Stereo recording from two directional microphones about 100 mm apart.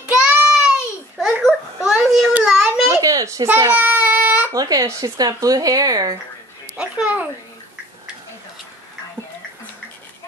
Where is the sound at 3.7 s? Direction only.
15° right (ahead or behind).